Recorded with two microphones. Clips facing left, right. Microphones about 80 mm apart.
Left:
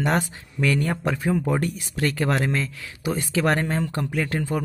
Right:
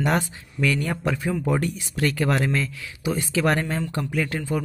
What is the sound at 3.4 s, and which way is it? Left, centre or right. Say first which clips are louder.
Speech: left 1 dB; left.